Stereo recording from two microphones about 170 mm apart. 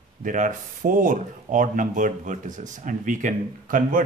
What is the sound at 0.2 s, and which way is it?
Speech, 50° right (ahead or behind).